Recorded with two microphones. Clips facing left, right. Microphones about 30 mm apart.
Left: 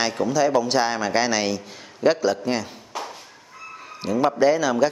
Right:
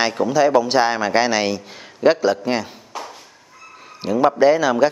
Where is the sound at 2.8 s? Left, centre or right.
Centre.